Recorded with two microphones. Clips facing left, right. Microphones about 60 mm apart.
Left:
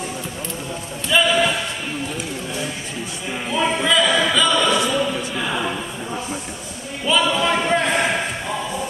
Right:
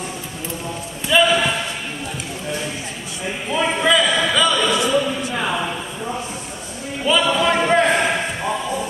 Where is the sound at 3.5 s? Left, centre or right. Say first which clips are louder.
Right 1 dB; centre.